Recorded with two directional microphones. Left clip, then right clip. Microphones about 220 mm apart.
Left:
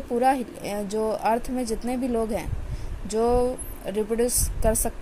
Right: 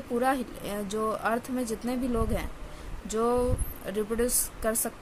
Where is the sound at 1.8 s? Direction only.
5° left (ahead or behind).